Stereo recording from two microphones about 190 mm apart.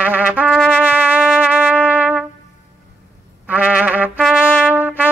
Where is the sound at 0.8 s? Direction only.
10° right (ahead or behind).